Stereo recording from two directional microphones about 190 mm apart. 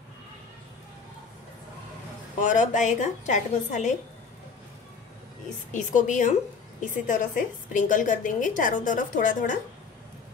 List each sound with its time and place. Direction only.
2.4 s a woman's voice: 40° left (ahead or behind)
5.7 s a woman's voice: 40° left (ahead or behind)